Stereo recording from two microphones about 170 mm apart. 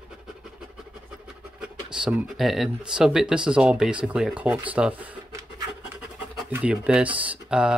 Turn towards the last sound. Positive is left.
turn(degrees=-5)  # may be behind; listen again after turning